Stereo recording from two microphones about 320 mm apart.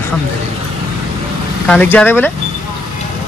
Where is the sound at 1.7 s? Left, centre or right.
Centre.